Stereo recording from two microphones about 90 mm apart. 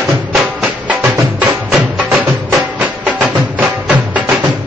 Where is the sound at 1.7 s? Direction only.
15° right (ahead or behind).